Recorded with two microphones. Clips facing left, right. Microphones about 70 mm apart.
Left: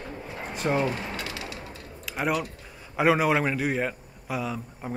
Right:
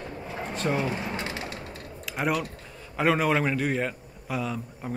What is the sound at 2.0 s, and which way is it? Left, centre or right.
A man's voice, centre.